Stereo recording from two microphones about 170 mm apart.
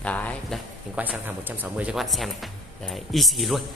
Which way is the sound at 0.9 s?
10° right (ahead or behind).